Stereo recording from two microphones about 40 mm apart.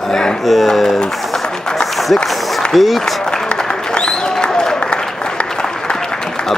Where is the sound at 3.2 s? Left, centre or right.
Centre.